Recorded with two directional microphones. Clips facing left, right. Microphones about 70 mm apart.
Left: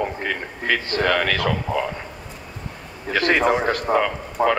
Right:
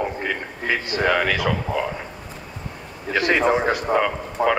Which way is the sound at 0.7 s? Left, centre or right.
Centre.